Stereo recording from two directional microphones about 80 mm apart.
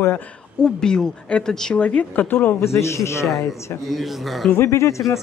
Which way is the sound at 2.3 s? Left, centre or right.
Left.